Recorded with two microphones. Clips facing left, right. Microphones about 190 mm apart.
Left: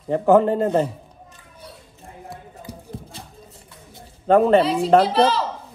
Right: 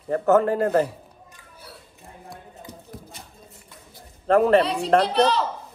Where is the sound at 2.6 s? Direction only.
30° left (ahead or behind).